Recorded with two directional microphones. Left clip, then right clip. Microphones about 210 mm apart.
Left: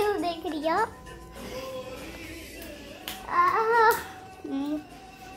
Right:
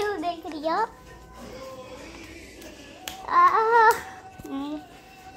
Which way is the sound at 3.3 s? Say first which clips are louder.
Right 5 dB; 30° right (ahead or behind).